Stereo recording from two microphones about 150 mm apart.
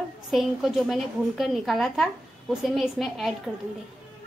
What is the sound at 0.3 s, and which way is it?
A woman's voice, centre (ahead or behind).